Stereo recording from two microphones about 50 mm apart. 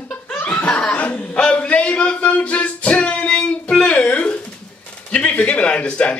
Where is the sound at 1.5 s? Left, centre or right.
Left.